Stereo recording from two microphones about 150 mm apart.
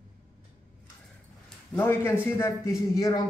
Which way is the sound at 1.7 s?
15° left (ahead or behind).